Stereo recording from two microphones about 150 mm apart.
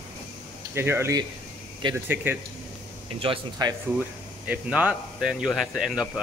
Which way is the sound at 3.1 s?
30° right (ahead or behind).